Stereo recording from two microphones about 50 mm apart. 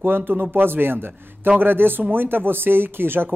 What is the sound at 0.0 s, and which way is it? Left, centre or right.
Speech, right.